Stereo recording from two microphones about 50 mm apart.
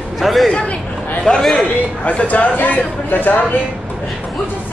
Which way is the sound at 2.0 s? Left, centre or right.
Left.